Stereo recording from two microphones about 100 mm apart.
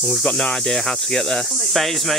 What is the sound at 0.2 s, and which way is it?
Speech, 5° left (ahead or behind).